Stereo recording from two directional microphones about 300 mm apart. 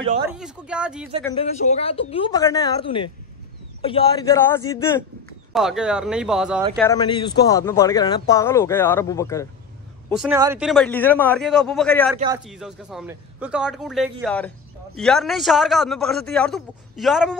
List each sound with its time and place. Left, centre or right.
0.3 s a man's voice: centre
1.4 s a man's voice: left; by 6.6 s centre
6.8 s speech: centre
10.0 s a man's voice: centre